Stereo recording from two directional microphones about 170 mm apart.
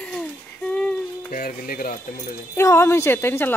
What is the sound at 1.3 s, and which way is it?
Speech, 55° left (ahead or behind).